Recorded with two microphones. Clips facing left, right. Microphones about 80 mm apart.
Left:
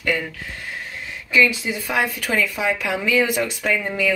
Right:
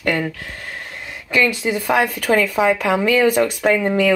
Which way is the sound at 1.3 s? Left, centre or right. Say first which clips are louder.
Right 1 dB; right.